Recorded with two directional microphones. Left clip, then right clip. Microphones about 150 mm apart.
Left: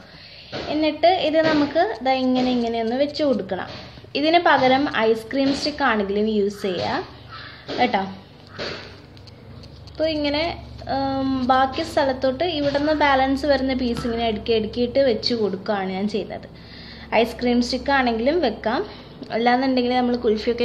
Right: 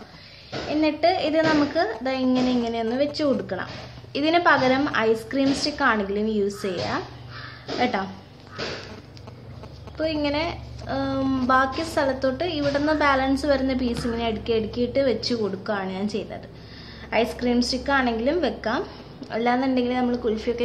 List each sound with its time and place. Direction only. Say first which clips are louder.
0.7 s a woman's voice: left 3 dB; 5° left (ahead or behind)
9.9 s a woman's voice: left 3 dB; 10° left (ahead or behind)